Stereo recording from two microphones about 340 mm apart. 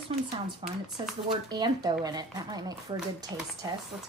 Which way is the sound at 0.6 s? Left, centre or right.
Centre.